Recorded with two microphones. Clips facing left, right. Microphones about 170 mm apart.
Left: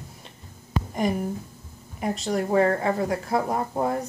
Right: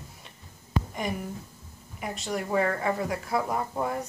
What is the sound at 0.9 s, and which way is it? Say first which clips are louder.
Speech: left 7 dB; 40° left (ahead or behind).